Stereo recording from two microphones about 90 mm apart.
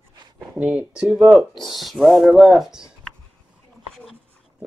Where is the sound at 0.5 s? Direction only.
15° right (ahead or behind).